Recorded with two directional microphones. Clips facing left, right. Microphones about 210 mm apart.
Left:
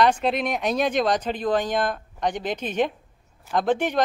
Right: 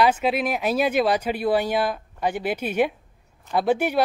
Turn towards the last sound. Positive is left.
turn(degrees=-10)  # may be behind; listen again after turning